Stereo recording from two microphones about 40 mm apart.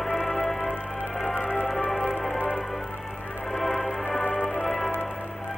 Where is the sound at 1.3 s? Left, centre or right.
Right.